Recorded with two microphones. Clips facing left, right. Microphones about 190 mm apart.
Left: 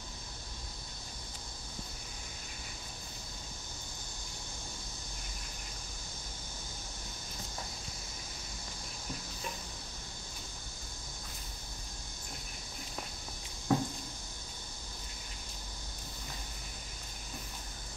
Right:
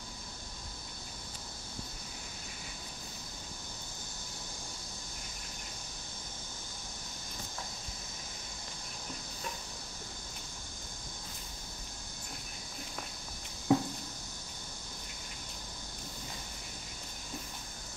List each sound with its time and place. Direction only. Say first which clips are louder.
13.7 s squish: right 3 dB; 15° right (ahead or behind)